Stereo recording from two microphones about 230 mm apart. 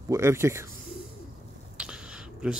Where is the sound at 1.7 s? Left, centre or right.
Centre.